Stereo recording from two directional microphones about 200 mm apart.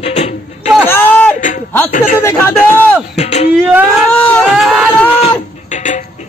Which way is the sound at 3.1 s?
35° left (ahead or behind).